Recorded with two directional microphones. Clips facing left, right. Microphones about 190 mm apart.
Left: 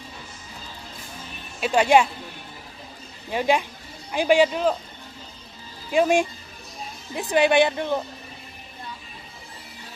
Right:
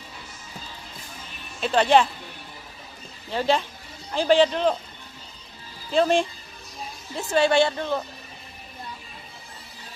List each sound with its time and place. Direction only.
1.6 s a woman's voice: 10° left (ahead or behind)
3.3 s a woman's voice: 15° left (ahead or behind)
5.9 s a woman's voice: 10° left (ahead or behind)